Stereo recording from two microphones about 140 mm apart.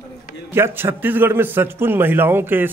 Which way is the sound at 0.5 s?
15° right (ahead or behind).